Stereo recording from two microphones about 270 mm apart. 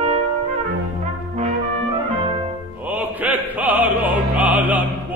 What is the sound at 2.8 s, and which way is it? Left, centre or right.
Opera, centre.